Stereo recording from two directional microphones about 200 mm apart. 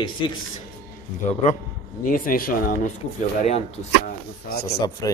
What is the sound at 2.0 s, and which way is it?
Speech, 45° left (ahead or behind).